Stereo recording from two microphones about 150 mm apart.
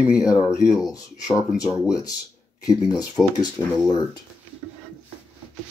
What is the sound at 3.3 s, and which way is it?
Speech, 25° left (ahead or behind).